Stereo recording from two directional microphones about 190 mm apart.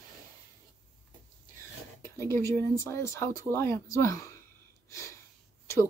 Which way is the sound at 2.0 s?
15° left (ahead or behind).